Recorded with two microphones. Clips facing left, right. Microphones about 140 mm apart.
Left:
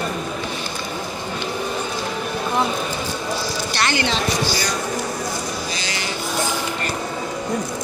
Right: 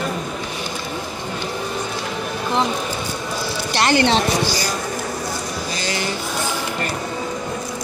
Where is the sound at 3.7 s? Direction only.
35° right (ahead or behind).